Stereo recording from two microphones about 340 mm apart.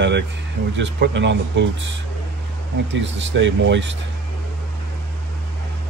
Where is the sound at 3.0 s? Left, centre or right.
Right.